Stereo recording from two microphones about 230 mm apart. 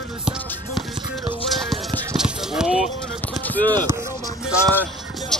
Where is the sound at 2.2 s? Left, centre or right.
Centre.